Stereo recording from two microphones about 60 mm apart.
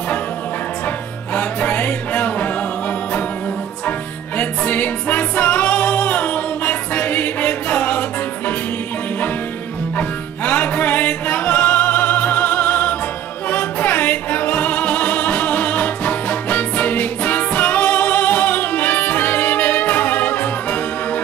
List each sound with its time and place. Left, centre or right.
1.3 s music: left
4.4 s music: left
9.9 s music: left